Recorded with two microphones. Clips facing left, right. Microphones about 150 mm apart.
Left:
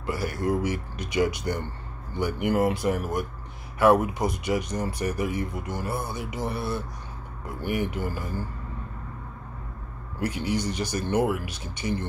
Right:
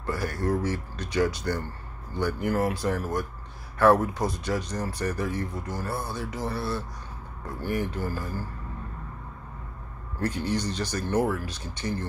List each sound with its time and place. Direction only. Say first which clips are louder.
0.0 s speech: left 1 dB; 10° left (ahead or behind)
10.2 s speech: left 1 dB; 10° left (ahead or behind)